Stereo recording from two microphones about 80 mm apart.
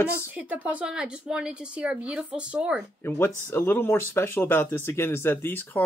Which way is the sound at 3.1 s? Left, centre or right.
Left.